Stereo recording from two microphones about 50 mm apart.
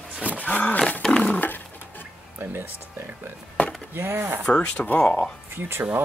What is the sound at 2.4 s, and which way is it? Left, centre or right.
Speech, right.